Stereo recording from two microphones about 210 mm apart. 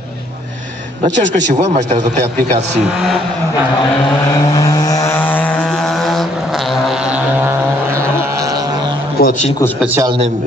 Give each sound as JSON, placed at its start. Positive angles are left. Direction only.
{"t": 1.5, "sound": "speech", "side_deg": -35}
{"t": 4.5, "sound": "vehicle", "side_deg": 20}
{"t": 9.2, "sound": "a sound", "side_deg": 45}
{"t": 9.9, "sound": "a man's voice", "side_deg": -20}